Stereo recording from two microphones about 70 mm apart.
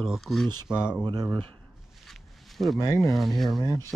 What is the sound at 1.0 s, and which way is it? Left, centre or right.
Speech, right.